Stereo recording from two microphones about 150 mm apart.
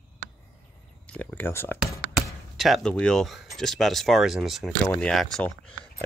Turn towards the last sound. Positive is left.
turn(degrees=5)  # may be behind; listen again after turning